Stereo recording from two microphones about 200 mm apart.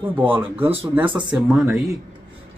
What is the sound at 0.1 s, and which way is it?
Speech, 10° right (ahead or behind).